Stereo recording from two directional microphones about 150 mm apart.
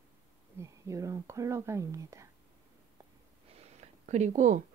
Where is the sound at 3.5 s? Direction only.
45° right (ahead or behind).